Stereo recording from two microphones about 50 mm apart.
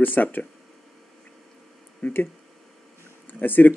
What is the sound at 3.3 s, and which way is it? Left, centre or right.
Speech, left.